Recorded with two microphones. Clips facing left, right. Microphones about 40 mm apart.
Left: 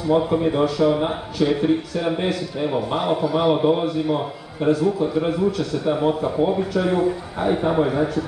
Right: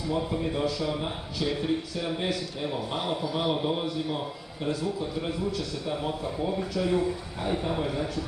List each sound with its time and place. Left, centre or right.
0.1 s a man's voice: left